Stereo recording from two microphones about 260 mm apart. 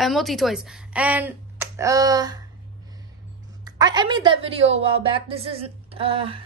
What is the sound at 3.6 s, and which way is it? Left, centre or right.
A woman's voice, centre.